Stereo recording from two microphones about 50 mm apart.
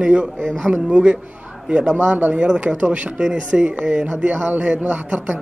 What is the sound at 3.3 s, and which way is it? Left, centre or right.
Speech, centre.